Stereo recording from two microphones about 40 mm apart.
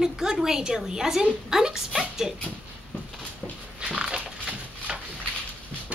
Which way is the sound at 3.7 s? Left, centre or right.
Right.